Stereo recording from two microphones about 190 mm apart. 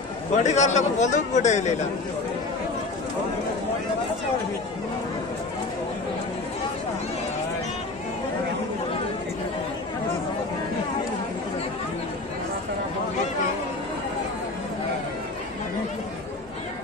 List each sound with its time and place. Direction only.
0.4 s a man's voice: 40° left (ahead or behind)